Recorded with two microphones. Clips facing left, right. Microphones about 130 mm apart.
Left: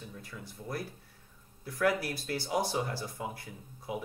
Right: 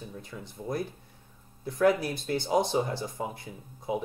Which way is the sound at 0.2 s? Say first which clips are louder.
Right 5 dB; 20° right (ahead or behind).